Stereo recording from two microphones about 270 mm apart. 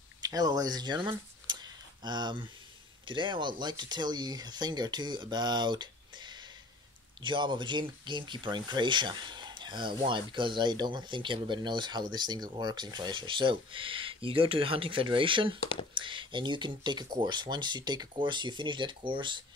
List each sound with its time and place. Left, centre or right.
0.2 s speech: centre